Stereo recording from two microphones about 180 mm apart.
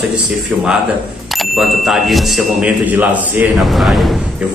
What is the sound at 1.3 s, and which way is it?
Speech, centre (ahead or behind).